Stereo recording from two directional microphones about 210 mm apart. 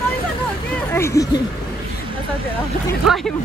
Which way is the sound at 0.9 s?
10° left (ahead or behind).